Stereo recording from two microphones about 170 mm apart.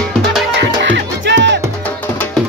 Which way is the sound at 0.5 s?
90° right.